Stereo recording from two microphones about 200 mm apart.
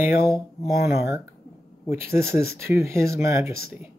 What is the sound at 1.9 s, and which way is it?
Speech, 15° right (ahead or behind).